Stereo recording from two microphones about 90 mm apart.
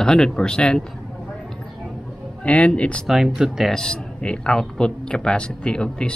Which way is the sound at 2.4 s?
15° left (ahead or behind).